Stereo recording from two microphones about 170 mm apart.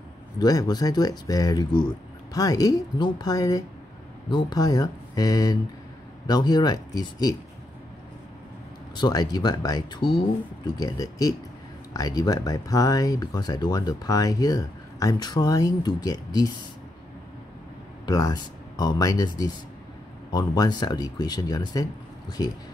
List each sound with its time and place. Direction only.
0.4 s speech: 25° left (ahead or behind)
8.9 s speech: 25° left (ahead or behind)
18.0 s speech: 20° left (ahead or behind)